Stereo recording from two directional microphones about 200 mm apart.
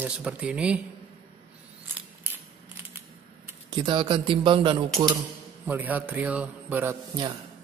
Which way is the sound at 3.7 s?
25° right (ahead or behind).